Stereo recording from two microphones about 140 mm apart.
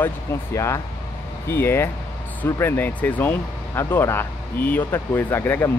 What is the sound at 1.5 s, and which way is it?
A man's voice, 15° left (ahead or behind).